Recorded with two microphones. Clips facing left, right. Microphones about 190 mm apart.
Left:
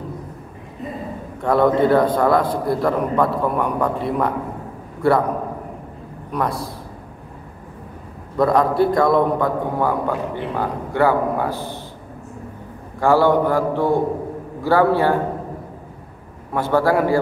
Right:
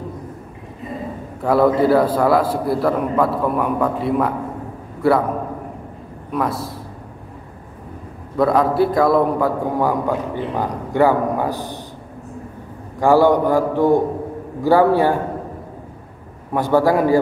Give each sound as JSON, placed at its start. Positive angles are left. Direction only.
{"t": 1.4, "sound": "a man's voice", "side_deg": -5}
{"t": 6.3, "sound": "a man's voice", "side_deg": 0}
{"t": 8.4, "sound": "a man's voice", "side_deg": 0}
{"t": 13.0, "sound": "a man's voice", "side_deg": -15}
{"t": 16.5, "sound": "a man's voice", "side_deg": -15}